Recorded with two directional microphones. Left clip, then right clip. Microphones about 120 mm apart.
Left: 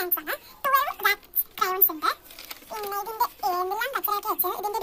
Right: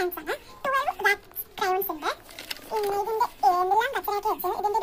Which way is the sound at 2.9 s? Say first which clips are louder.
Right 2 dB; 55° left (ahead or behind).